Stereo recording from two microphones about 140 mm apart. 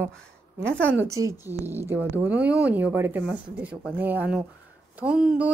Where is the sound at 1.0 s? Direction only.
20° right (ahead or behind).